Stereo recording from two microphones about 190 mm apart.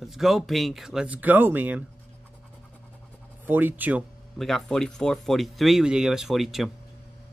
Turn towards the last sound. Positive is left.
turn(degrees=0)  # may be behind; listen again after turning